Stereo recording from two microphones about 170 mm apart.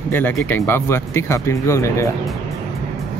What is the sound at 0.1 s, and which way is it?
Speech, 10° left (ahead or behind).